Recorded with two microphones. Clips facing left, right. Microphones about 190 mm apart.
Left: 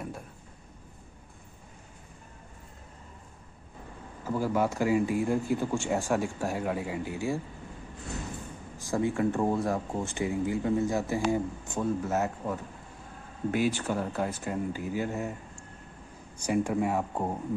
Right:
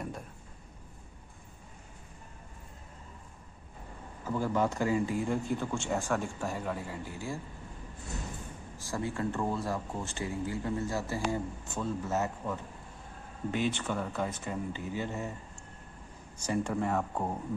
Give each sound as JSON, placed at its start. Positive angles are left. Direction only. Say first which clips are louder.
{"t": 4.3, "sound": "speech", "louder": "left 2 dB", "side_deg": 10}
{"t": 8.8, "sound": "speech", "louder": "left 6 dB", "side_deg": 15}
{"t": 16.3, "sound": "speech", "louder": "left 4 dB", "side_deg": 10}